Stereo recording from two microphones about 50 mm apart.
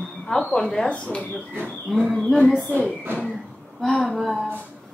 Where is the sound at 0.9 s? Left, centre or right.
Left.